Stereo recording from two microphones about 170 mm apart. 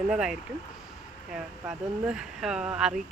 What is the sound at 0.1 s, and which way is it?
Speech, 5° right (ahead or behind).